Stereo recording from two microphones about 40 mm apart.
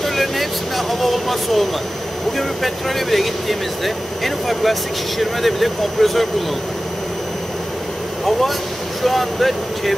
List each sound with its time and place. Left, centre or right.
0.0 s speech: centre
8.3 s speech: centre